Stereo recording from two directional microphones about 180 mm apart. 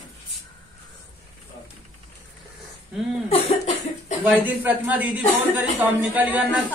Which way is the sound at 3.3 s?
35° left (ahead or behind).